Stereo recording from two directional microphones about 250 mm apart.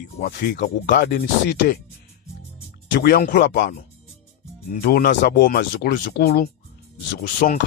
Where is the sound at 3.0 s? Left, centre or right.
Left.